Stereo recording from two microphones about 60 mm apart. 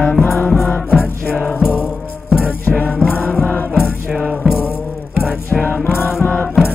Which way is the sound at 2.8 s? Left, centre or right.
Left.